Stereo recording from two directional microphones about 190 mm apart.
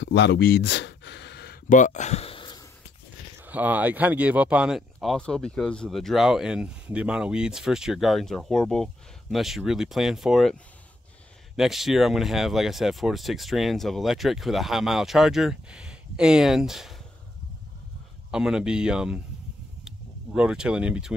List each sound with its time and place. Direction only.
0.0 s a sound: 65° left (ahead or behind); by 2.6 s 25° left (ahead or behind)
3.3 s speech: 10° right (ahead or behind)
18.3 s speech: 5° right (ahead or behind)
20.3 s speech: 5° right (ahead or behind)